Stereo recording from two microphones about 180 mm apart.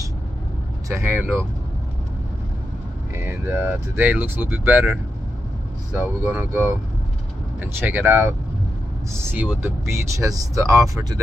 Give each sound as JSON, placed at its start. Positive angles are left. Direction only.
{"t": 0.8, "sound": "speech", "side_deg": -15}
{"t": 3.3, "sound": "speech", "side_deg": -10}
{"t": 5.9, "sound": "speech", "side_deg": -10}
{"t": 9.6, "sound": "speech", "side_deg": -15}